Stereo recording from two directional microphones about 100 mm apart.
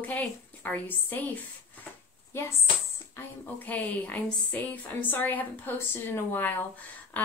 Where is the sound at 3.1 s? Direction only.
20° left (ahead or behind).